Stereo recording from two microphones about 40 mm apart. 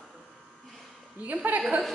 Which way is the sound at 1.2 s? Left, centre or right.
Right.